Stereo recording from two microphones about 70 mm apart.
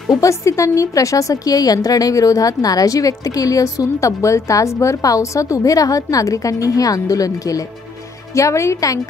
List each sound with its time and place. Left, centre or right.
0.1 s a woman's voice: left